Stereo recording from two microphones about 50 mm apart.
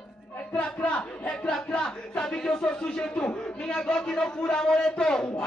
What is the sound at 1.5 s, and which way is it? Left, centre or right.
A man's voice, centre.